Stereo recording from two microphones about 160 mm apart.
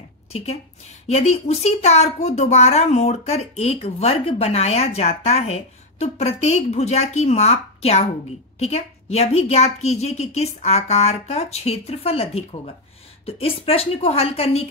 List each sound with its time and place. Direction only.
1.0 s speech: 45° left (ahead or behind)